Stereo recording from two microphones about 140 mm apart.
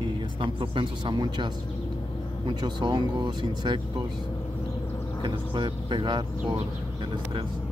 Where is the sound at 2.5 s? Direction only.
30° right (ahead or behind).